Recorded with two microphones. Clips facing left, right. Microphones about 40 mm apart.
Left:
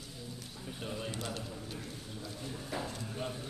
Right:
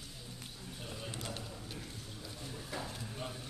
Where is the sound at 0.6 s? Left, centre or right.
Centre.